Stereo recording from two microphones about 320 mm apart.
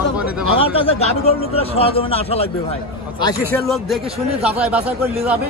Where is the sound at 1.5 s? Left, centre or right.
Centre.